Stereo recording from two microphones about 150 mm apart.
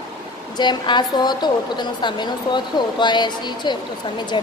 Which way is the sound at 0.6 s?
30° left (ahead or behind).